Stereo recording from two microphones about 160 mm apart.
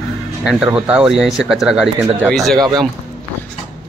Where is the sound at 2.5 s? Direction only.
25° right (ahead or behind).